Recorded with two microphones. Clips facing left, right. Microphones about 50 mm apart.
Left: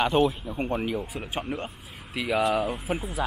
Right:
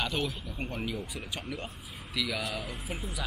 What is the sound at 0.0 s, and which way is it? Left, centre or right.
Speech, left.